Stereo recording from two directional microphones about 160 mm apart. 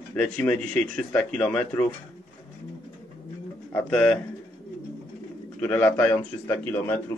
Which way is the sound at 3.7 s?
10° left (ahead or behind).